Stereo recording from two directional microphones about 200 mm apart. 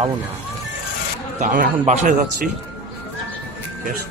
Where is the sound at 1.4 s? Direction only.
40° right (ahead or behind).